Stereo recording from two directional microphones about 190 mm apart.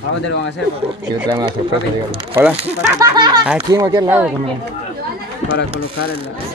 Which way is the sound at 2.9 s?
20° right (ahead or behind).